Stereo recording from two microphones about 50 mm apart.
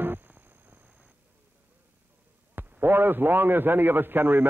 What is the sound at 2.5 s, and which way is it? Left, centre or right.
A man's voice, right.